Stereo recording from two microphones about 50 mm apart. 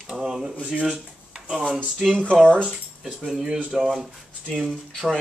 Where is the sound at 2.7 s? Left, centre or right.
Centre.